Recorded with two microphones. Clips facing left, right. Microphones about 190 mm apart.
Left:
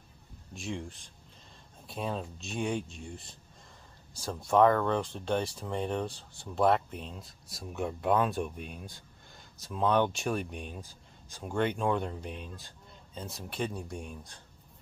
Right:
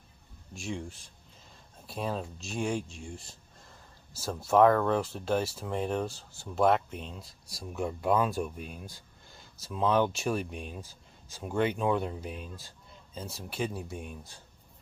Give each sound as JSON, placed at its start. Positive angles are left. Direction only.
{"t": 0.6, "sound": "speech", "side_deg": 0}